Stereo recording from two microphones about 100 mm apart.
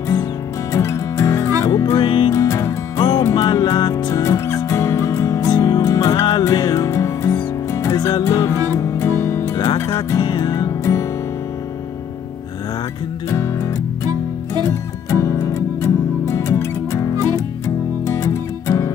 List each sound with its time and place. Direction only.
0.7 s music: 35° left (ahead or behind)
2.0 s music: 50° left (ahead or behind)
2.3 s music: 30° left (ahead or behind)
13.3 s music: 30° left (ahead or behind)
14.7 s music: 30° left (ahead or behind)